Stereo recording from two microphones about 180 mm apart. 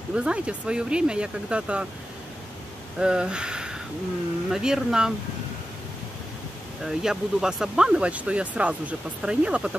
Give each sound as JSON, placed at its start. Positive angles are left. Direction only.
{"t": 0.1, "sound": "speech", "side_deg": -5}
{"t": 3.0, "sound": "speech", "side_deg": -5}
{"t": 6.8, "sound": "speech", "side_deg": 0}